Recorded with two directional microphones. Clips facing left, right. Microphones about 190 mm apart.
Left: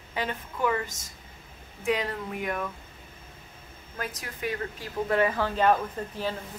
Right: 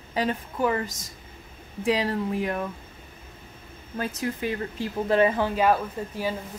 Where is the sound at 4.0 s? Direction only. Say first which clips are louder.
Right 6 dB; 25° right (ahead or behind).